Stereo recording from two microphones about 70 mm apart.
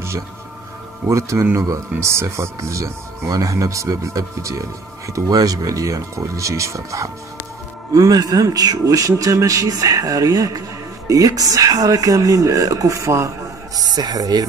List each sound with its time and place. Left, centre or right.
1.0 s speech: right
3.3 s speech: right
7.9 s a man's voice: right
13.7 s a man's voice: right